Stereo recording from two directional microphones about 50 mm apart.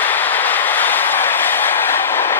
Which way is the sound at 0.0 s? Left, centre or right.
Left.